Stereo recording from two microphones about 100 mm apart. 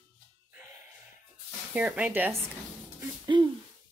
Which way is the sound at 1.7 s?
15° right (ahead or behind).